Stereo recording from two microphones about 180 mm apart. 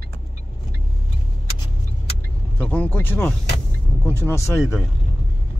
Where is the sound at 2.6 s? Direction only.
10° left (ahead or behind).